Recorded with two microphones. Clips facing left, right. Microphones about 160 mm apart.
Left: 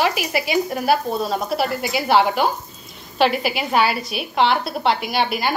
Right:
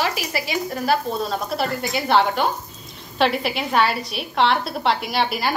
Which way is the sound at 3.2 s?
5° left (ahead or behind).